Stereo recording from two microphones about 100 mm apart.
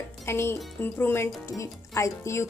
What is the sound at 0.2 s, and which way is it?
A woman's voice, 25° left (ahead or behind).